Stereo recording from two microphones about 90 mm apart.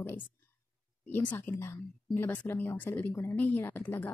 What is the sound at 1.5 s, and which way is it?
Speech, 30° left (ahead or behind).